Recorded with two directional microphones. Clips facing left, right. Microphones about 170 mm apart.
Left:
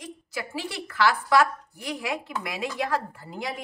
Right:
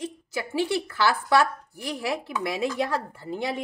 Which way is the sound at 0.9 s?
30° right (ahead or behind).